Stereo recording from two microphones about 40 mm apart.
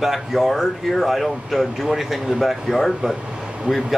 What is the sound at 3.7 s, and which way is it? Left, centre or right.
Speech, right.